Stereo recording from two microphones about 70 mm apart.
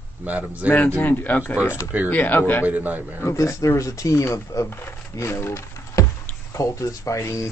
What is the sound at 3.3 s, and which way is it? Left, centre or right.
Speech, left.